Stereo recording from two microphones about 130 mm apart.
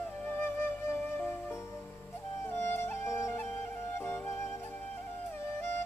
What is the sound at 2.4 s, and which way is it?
Music, 20° left (ahead or behind).